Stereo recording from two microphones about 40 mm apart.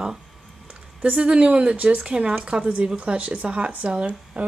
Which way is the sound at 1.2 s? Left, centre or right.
Right.